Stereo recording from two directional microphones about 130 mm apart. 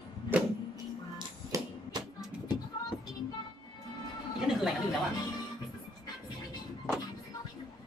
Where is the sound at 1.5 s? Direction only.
25° right (ahead or behind).